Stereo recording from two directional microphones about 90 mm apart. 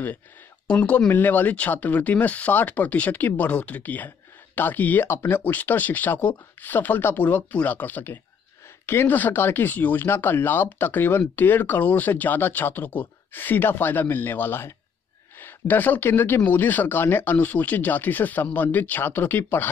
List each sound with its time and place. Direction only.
0.7 s speech: 15° left (ahead or behind)